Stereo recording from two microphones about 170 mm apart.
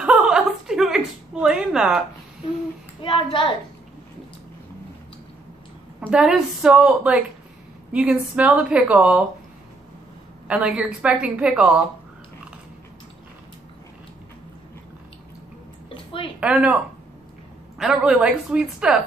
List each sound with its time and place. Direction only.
0.0 s a sound: 5° right (ahead or behind)
3.0 s a child's voice: 30° left (ahead or behind)
5.9 s a woman's voice: 5° right (ahead or behind)
10.5 s a woman's voice: 5° right (ahead or behind)
15.9 s a sound: 30° left (ahead or behind)
16.3 s a woman's voice: 5° right (ahead or behind)